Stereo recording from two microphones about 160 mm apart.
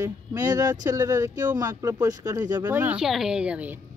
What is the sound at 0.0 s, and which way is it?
Speech, 20° right (ahead or behind).